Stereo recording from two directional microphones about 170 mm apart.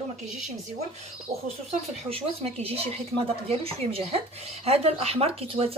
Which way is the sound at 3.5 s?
35° right (ahead or behind).